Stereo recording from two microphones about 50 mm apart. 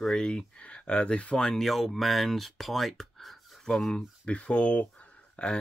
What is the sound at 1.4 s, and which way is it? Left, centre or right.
Speech, centre.